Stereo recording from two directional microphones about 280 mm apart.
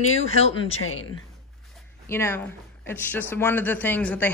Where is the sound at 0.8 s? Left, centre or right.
Left.